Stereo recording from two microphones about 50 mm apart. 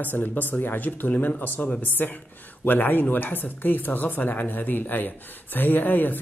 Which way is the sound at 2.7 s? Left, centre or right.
Left.